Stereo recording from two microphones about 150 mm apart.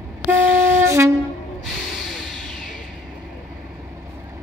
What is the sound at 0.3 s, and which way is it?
Wind instrument, 15° right (ahead or behind).